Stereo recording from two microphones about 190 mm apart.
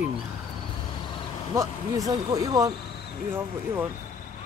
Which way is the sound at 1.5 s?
15° right (ahead or behind).